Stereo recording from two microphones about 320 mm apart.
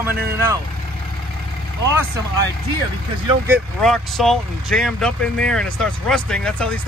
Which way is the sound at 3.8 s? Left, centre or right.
Centre.